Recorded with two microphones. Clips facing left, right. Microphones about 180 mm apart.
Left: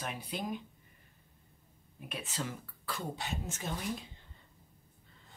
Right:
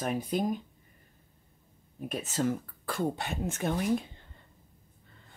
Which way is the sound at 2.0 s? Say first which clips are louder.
Right 9 dB; 45° right (ahead or behind).